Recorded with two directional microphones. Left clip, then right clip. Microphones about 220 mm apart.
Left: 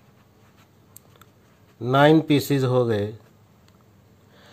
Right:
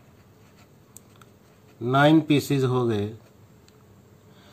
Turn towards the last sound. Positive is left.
turn(degrees=35)  # may be behind; listen again after turning